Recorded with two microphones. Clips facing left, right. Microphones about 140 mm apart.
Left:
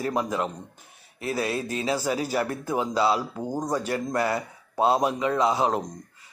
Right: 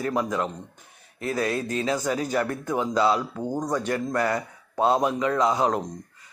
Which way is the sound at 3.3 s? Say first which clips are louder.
Right 1 dB; 10° left (ahead or behind).